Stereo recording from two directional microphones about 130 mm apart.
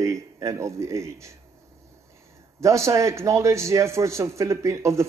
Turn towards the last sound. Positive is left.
turn(degrees=-25)  # may be behind; listen again after turning